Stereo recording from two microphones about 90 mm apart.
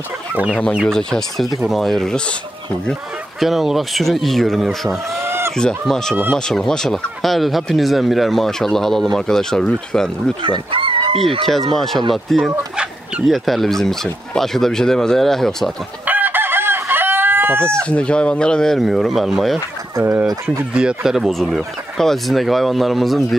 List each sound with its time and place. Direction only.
0.8 s speech: 5° left (ahead or behind)
5.2 s chicken: 25° right (ahead or behind)
5.6 s speech: 5° left (ahead or behind)
10.4 s fowl: 75° right (ahead or behind)
11.7 s speech: centre (ahead or behind)
16.1 s chicken: 20° right (ahead or behind)
17.8 s speech: 10° left (ahead or behind)
20.7 s speech: 10° right (ahead or behind)